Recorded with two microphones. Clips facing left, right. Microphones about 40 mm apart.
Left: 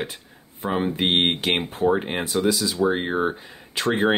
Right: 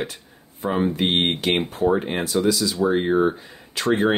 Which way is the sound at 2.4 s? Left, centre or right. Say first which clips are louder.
Even; centre.